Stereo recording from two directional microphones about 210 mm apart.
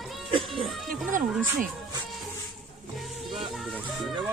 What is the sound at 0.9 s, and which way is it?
Speech, 40° right (ahead or behind).